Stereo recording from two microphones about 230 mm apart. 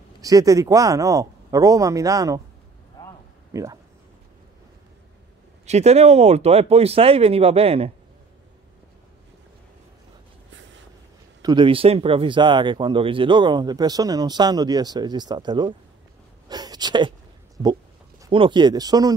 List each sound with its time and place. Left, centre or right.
0.2 s speech: centre
3.5 s speech: centre
5.7 s speech: right
11.4 s speech: right
18.2 s speech: right